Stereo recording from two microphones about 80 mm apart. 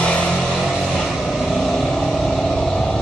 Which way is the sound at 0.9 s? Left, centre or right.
Centre.